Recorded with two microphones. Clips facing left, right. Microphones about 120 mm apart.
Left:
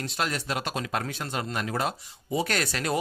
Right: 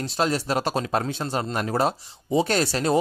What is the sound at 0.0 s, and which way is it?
Speech, 35° right (ahead or behind).